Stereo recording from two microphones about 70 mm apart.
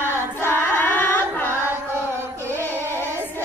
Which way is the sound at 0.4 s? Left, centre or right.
Left.